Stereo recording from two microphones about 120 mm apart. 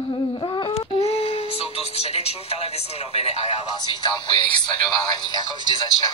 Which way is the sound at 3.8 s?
40° left (ahead or behind).